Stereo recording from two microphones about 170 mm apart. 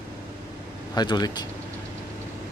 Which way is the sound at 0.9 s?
25° left (ahead or behind).